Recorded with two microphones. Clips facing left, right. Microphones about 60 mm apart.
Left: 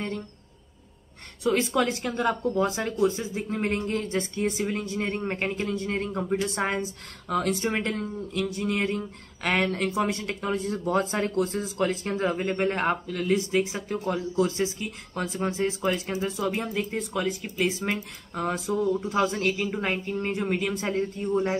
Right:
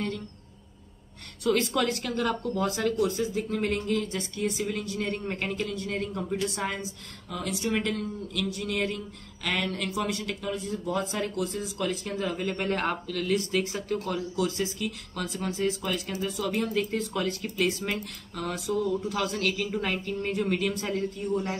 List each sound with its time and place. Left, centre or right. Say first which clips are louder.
1.4 s speech: left 2 dB; left
6.8 s speech: left 5 dB; left
9.4 s speech: left 5 dB; left
10.5 s speech: left 5 dB; left
16.5 s speech: right 1 dB; centre
17.7 s speech: left 2 dB; left